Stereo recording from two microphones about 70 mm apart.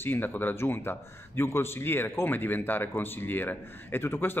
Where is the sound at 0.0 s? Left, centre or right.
Left.